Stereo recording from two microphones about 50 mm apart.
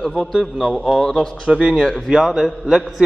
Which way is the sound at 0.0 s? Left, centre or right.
Centre.